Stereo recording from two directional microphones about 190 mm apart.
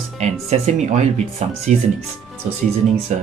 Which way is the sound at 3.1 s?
40° right (ahead or behind).